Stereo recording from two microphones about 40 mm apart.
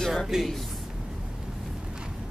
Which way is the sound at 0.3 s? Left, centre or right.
Centre.